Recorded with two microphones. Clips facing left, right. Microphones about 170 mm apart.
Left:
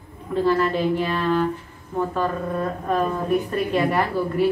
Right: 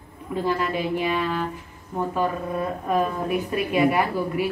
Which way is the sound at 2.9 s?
10° right (ahead or behind).